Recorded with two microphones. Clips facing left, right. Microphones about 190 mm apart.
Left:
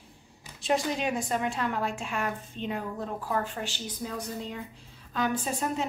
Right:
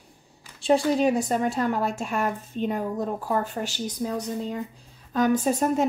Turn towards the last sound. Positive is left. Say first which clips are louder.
# right 8 dB
turn(degrees=-45)  # may be behind; listen again after turning